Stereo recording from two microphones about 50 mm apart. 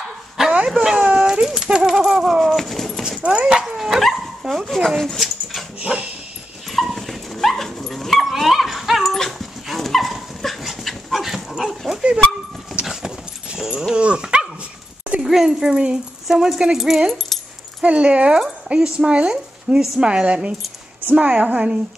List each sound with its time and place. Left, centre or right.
0.4 s a sound: centre
2.4 s a sound: centre
3.2 s dog: centre
3.6 s dog: centre
5.8 s dog: right
6.7 s dog: centre
9.1 s dog: centre
13.9 s dog: centre
15.2 s a sound: centre
17.8 s a woman's voice: right